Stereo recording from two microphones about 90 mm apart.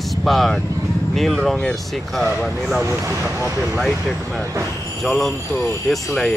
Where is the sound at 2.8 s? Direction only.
35° right (ahead or behind).